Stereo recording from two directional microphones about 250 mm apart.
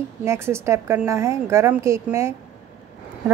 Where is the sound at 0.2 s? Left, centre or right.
Centre.